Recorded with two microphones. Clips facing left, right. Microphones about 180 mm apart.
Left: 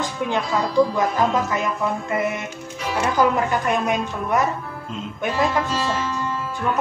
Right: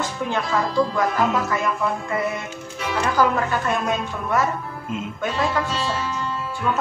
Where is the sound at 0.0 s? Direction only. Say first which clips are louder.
Left 1 dB; 15° left (ahead or behind).